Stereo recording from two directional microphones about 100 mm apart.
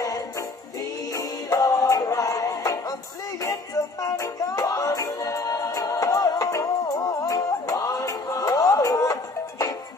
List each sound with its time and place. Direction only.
1.1 s music: 40° left (ahead or behind)